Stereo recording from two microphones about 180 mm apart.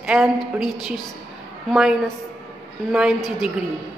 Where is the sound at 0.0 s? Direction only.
5° right (ahead or behind).